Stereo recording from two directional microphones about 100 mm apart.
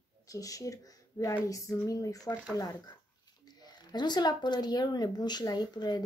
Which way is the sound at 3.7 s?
45° left (ahead or behind).